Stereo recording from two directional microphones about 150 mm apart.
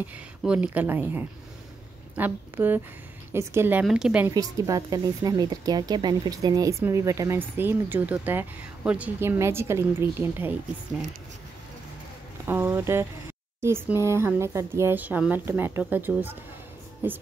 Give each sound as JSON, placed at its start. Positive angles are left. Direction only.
{"t": 0.4, "sound": "speech", "side_deg": -10}
{"t": 3.8, "sound": "speech", "side_deg": -5}
{"t": 4.3, "sound": "speech", "side_deg": -25}
{"t": 12.4, "sound": "speech", "side_deg": -15}